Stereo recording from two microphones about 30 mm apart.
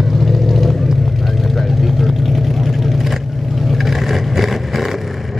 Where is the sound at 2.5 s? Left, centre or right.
Centre.